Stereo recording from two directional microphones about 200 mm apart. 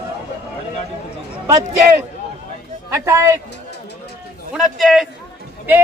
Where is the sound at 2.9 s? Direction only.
15° right (ahead or behind).